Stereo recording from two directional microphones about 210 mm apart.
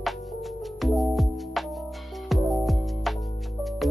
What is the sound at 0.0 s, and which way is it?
Music, centre (ahead or behind).